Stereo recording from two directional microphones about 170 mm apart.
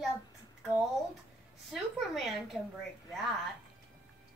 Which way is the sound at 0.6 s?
5° right (ahead or behind).